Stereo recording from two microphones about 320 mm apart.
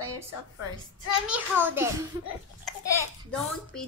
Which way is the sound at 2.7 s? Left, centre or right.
Centre.